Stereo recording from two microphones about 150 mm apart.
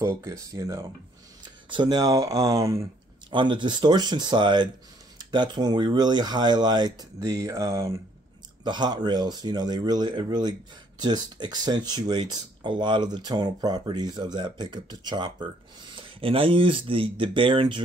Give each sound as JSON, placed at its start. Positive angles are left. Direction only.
{"t": 0.0, "sound": "speech", "side_deg": -20}
{"t": 3.3, "sound": "speech", "side_deg": -30}
{"t": 8.6, "sound": "speech", "side_deg": -30}